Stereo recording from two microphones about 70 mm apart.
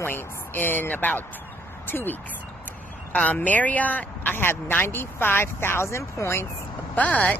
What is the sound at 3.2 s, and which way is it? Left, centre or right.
Speech, left.